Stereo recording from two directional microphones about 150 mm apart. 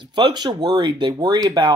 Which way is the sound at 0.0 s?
30° right (ahead or behind).